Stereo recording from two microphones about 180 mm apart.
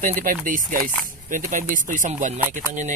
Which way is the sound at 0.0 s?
45° right (ahead or behind).